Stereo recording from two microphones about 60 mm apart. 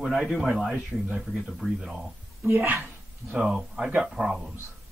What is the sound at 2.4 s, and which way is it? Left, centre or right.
Speech, right.